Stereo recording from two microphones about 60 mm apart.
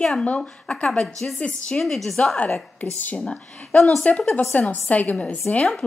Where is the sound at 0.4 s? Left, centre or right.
Centre.